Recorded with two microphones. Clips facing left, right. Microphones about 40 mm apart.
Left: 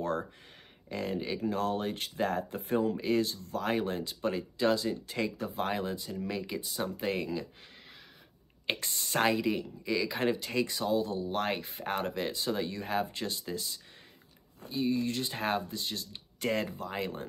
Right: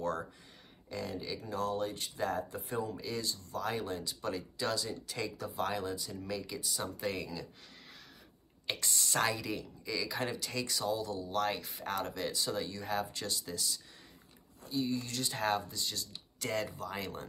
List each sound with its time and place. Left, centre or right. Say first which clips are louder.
0.0 s speech: left 3 dB; left
8.6 s speech: left 2 dB; left